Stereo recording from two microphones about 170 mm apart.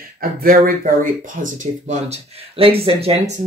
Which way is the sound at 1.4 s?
45° right (ahead or behind).